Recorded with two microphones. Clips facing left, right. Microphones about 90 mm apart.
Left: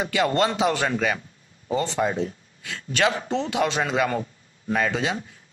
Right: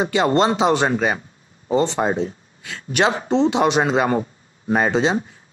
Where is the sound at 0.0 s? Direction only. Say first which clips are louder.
Right 5 dB; 25° right (ahead or behind).